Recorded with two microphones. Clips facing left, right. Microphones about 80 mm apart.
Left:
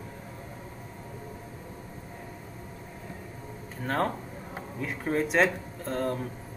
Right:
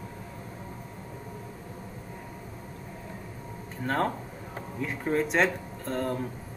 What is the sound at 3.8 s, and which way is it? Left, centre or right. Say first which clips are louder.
Speech: right 1 dB; centre.